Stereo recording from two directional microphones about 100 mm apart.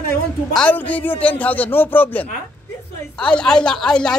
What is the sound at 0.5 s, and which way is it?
A woman's voice, 15° left (ahead or behind).